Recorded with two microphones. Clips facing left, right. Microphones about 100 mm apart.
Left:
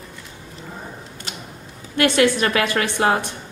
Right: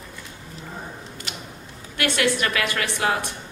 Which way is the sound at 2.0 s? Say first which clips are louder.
Left 6 dB; 30° left (ahead or behind).